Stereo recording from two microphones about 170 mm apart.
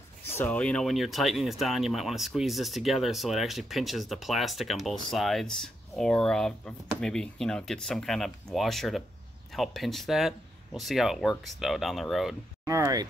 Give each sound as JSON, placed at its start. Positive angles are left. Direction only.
{"t": 0.4, "sound": "speech", "side_deg": 5}
{"t": 12.6, "sound": "speech", "side_deg": -20}